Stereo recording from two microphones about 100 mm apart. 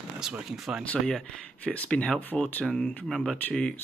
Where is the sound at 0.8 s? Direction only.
10° left (ahead or behind).